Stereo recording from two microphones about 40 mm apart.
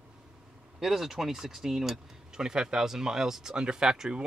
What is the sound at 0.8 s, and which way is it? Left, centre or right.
Speech, centre.